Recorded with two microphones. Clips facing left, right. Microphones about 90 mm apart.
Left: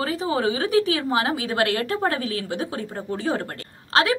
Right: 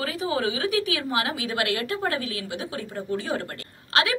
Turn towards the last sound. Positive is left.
turn(degrees=35)  # may be behind; listen again after turning